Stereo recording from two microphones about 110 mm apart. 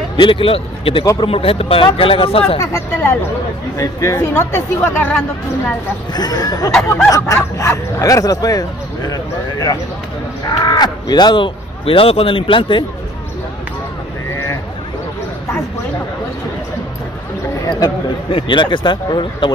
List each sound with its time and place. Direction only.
0.2 s speech: 50° left (ahead or behind)
2.6 s speech: 25° left (ahead or behind)
6.1 s speech: 35° left (ahead or behind)
17.6 s speech: 40° left (ahead or behind)